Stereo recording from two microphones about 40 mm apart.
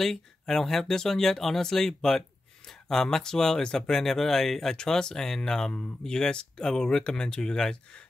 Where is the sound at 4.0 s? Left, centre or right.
Centre.